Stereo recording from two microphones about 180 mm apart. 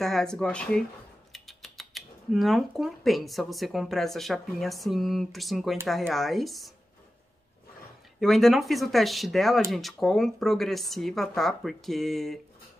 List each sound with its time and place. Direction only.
0.0 s speech: centre (ahead or behind)
8.2 s speech: centre (ahead or behind)